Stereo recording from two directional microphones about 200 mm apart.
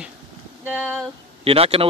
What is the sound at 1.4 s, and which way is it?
Speech, 30° right (ahead or behind).